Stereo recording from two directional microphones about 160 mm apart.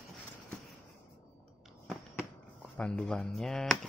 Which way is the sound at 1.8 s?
5° left (ahead or behind).